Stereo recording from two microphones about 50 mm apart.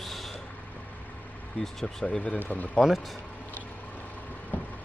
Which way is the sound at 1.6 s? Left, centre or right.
Centre.